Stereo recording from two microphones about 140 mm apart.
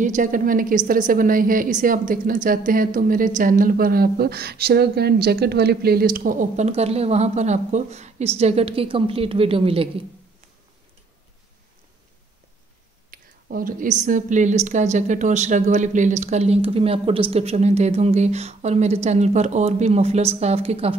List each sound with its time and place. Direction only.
0.0 s a woman's voice: 65° right (ahead or behind); by 9.8 s 40° right (ahead or behind)
13.1 s a woman's voice: 90° right; by 20.9 s 45° right (ahead or behind)